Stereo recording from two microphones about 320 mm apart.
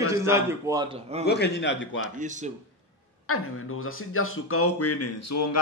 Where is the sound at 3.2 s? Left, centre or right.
Left.